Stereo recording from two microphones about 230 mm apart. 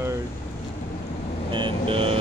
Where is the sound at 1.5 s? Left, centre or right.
Right.